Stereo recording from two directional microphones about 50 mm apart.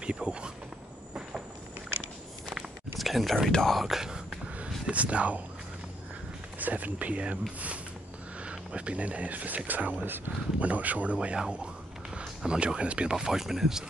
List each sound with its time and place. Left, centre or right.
0.0 s speech: right
3.0 s speech: centre
3.7 s a sound: centre
4.6 s a sound: right
6.6 s speech: right
8.5 s speech: right
10.0 s speech: right
10.6 s a man's voice: right; by 13.8 s centre